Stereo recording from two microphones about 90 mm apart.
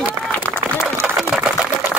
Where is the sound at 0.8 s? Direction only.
5° right (ahead or behind).